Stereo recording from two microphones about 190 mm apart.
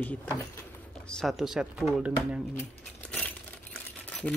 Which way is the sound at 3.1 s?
5° left (ahead or behind).